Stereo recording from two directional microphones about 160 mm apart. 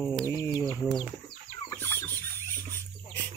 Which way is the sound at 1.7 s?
15° left (ahead or behind).